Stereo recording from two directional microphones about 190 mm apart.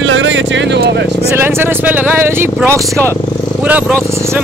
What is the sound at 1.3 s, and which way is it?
Speech, 10° right (ahead or behind).